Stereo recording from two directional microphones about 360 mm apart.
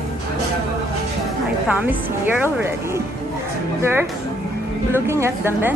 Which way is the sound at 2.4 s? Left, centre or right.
Centre.